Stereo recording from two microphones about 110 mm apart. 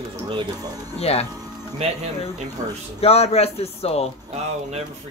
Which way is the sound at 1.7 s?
75° right (ahead or behind).